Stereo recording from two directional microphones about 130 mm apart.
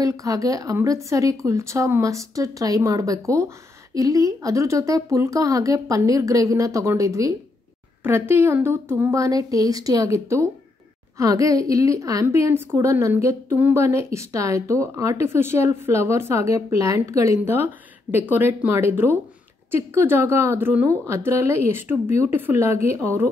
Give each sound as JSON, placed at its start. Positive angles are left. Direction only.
{"t": 0.0, "sound": "a woman's voice", "side_deg": -25}